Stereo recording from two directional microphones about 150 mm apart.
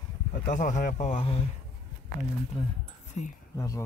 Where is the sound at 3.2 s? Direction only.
45° left (ahead or behind).